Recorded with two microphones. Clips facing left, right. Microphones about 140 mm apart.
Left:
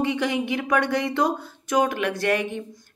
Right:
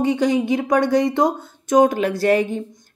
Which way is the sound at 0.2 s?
25° right (ahead or behind).